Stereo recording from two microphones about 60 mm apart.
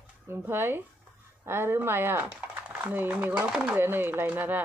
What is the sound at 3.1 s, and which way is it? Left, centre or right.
Speech, right.